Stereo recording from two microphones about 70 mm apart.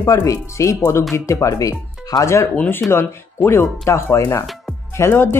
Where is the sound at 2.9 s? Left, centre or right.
Left.